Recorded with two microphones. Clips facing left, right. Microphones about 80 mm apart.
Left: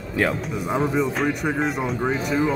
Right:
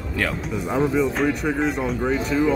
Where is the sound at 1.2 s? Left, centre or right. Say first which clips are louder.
Right 1 dB; centre.